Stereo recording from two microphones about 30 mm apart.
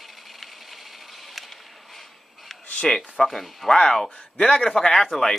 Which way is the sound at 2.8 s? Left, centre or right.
Centre.